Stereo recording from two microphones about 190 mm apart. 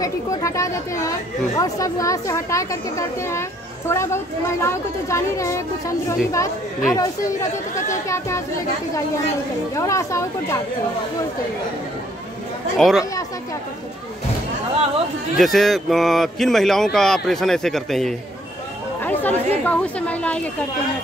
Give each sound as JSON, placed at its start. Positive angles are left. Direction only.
{"t": 0.0, "sound": "speech", "side_deg": 15}
{"t": 9.8, "sound": "speech", "side_deg": 15}
{"t": 12.7, "sound": "speech", "side_deg": 0}
{"t": 15.3, "sound": "speech", "side_deg": 0}